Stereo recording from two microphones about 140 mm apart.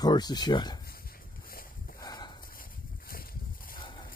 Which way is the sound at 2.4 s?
90° left.